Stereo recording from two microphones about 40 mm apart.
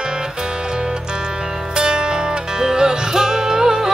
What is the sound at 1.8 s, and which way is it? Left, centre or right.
Music, right.